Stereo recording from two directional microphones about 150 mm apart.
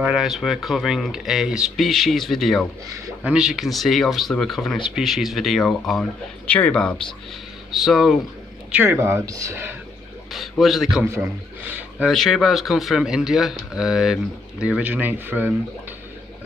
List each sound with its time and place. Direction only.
0.0 s speech: centre (ahead or behind)
8.7 s speech: 15° right (ahead or behind)
10.3 s speech: centre (ahead or behind)
11.1 s a man's voice: 15° right (ahead or behind)
12.1 s speech: centre (ahead or behind)